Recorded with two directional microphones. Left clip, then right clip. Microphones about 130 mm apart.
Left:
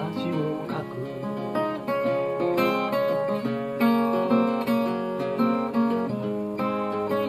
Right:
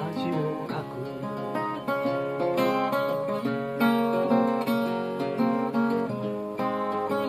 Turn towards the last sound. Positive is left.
turn(degrees=-35)  # may be behind; listen again after turning